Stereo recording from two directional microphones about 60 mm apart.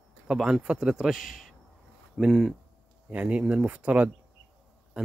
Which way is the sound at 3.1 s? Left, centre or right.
Right.